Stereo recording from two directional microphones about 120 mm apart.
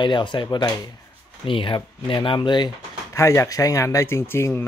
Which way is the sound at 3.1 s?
25° left (ahead or behind).